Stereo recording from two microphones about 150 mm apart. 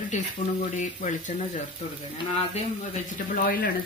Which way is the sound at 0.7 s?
55° left (ahead or behind).